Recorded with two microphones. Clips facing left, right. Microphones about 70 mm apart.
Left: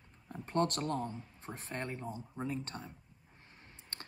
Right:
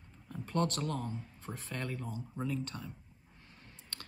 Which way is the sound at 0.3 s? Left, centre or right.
Left.